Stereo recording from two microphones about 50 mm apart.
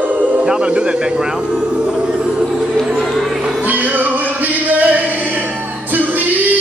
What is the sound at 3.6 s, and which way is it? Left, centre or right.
Music, right.